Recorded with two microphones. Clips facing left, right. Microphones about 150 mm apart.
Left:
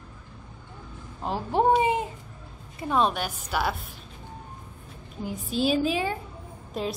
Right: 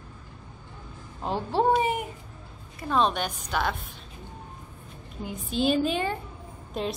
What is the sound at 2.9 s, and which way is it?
Speech, 5° left (ahead or behind).